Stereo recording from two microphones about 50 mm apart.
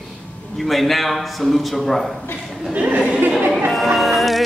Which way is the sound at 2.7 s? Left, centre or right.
Right.